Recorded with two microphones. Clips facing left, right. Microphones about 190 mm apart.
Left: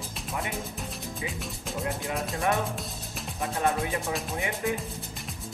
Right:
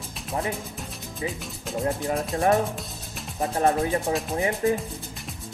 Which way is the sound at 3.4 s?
35° right (ahead or behind).